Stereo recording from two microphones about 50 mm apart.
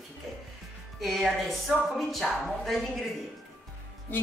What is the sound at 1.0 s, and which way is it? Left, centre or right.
Speech, centre.